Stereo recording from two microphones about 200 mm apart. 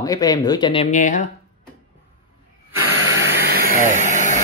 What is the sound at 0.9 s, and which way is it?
Speech, 40° left (ahead or behind).